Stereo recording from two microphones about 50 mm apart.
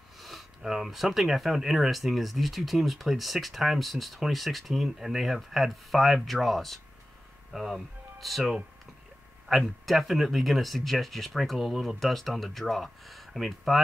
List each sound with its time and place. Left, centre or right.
0.6 s speech: centre